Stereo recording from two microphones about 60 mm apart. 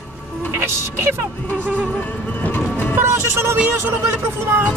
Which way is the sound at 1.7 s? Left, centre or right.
Centre.